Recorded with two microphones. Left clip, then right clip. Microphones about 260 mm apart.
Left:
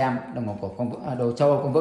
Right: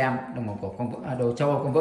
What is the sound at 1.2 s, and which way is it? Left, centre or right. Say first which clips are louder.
Speech: left 4 dB; centre.